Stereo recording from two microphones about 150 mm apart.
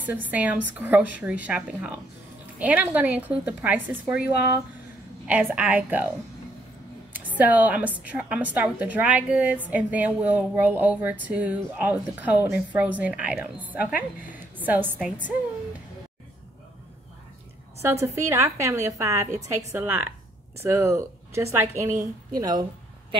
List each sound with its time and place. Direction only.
0.0 s a woman's voice: 10° right (ahead or behind)
7.1 s a woman's voice: 10° right (ahead or behind)
17.8 s a woman's voice: 20° right (ahead or behind)